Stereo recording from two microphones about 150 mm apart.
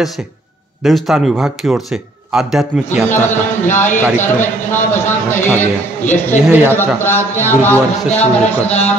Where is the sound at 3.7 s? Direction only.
15° left (ahead or behind).